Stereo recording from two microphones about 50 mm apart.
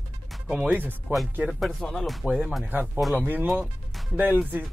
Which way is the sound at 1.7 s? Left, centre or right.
Centre.